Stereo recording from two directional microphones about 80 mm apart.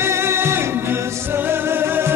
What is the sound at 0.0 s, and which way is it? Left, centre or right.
Music, right.